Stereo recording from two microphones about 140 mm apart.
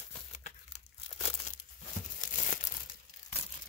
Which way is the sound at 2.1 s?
65° left (ahead or behind).